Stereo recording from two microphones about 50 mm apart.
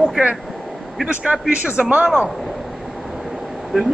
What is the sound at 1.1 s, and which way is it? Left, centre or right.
A man's voice, right.